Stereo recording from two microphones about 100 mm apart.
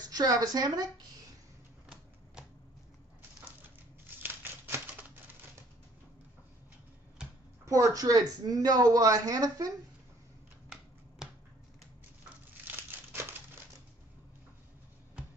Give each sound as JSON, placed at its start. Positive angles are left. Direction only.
{"t": 0.1, "sound": "speech", "side_deg": -40}
{"t": 4.2, "sound": "typewriter", "side_deg": -20}
{"t": 7.6, "sound": "speech", "side_deg": -35}
{"t": 12.6, "sound": "crumpling", "side_deg": -20}